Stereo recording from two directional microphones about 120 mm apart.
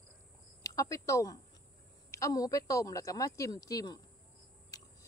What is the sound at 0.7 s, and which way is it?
Speech, 30° left (ahead or behind).